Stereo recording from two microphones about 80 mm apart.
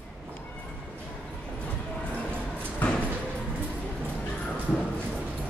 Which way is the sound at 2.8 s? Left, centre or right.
Centre.